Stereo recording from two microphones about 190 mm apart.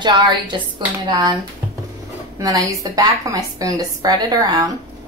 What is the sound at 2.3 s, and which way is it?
A woman's voice, 15° right (ahead or behind).